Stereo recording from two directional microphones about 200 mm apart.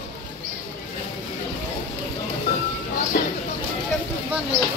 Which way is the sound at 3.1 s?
50° left (ahead or behind).